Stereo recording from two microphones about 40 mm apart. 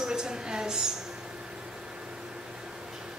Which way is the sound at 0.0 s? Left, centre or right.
Centre.